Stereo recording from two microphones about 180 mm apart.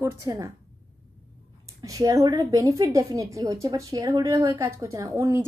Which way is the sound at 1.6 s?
20° right (ahead or behind).